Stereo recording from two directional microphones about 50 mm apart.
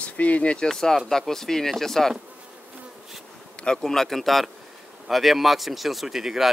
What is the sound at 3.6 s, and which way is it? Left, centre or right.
Speech, centre.